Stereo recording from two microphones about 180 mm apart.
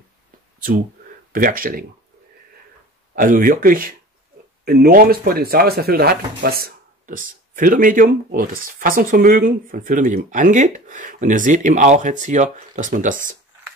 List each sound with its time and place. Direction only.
0.6 s speech: 50° right (ahead or behind)
3.2 s speech: 50° right (ahead or behind)